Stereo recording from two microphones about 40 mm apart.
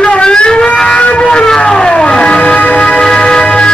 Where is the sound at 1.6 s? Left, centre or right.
Left.